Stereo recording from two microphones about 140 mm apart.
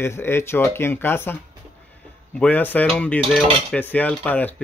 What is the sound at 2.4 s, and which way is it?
Speech, 10° left (ahead or behind).